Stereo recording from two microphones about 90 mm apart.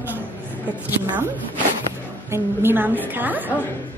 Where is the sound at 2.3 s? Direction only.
25° right (ahead or behind).